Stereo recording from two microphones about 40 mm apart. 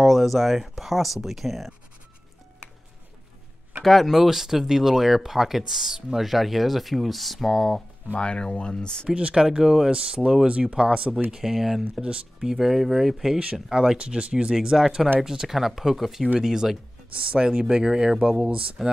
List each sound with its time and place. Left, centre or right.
0.0 s speech: centre
3.8 s speech: centre
8.1 s speech: left
9.3 s speech: centre
9.8 s speech: right
11.3 s speech: centre
11.9 s speech: right
12.4 s speech: centre
13.4 s speech: right
17.1 s speech: right
18.8 s speech: centre